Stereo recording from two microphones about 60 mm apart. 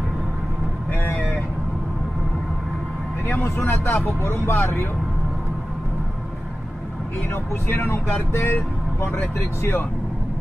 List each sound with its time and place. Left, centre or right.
3.4 s speech: left
7.7 s speech: left